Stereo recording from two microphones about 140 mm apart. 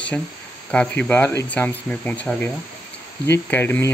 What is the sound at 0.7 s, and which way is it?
Speech, 10° left (ahead or behind).